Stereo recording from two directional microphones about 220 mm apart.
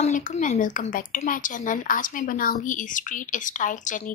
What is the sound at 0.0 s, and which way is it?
A woman's voice, 35° left (ahead or behind).